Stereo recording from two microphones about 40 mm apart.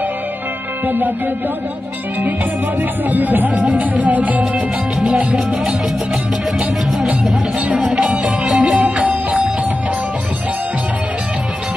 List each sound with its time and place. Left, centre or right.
0.8 s music: right
3.1 s music: right
7.9 s music: right